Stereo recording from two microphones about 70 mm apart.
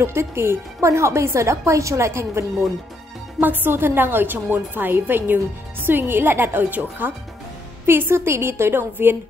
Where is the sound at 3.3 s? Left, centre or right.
Right.